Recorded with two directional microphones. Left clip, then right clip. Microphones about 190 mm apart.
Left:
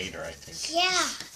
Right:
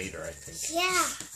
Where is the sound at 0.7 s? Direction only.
Centre (ahead or behind).